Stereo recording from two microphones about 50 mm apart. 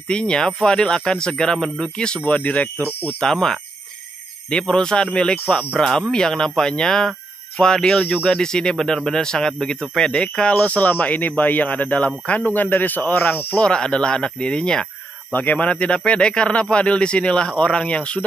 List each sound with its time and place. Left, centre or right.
0.1 s speech: centre
2.2 s speech: left
3.2 s speech: centre
4.6 s speech: centre
8.4 s speech: centre
10.6 s speech: left
13.6 s speech: centre
15.3 s speech: left